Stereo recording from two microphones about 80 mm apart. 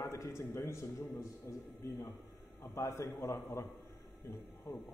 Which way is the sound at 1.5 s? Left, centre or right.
Left.